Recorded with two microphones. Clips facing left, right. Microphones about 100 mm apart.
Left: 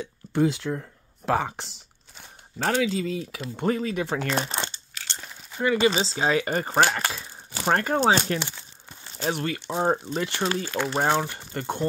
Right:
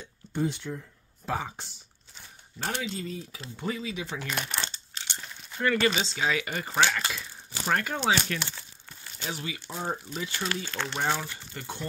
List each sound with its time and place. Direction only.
0.0 s speech: 90° left
2.6 s speech: 90° left
3.6 s speech: 50° left (ahead or behind)
4.3 s speech: 35° left (ahead or behind)
5.3 s a sound: 10° left (ahead or behind)
5.9 s speech: 35° left (ahead or behind)
8.4 s crumpling: 20° left (ahead or behind)
9.3 s speech: 60° left (ahead or behind)
10.7 s speech: 5° left (ahead or behind)
11.1 s speech: 60° left (ahead or behind)